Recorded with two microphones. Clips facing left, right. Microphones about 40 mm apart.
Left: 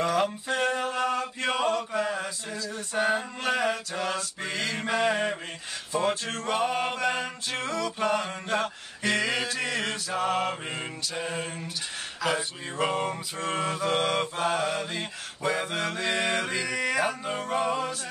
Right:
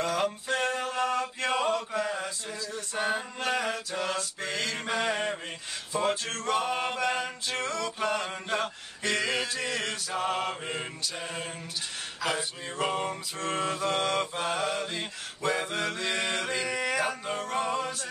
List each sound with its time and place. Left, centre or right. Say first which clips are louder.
0.0 s mantra: left 3 dB; centre